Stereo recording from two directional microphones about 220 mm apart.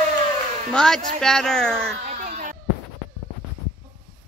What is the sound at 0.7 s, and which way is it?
Speech, 5° left (ahead or behind).